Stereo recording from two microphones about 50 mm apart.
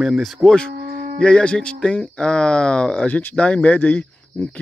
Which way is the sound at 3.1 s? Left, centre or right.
Left.